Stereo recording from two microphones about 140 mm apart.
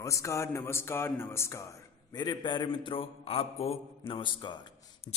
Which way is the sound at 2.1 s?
30° left (ahead or behind).